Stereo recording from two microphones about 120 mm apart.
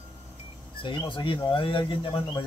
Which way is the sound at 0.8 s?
45° left (ahead or behind).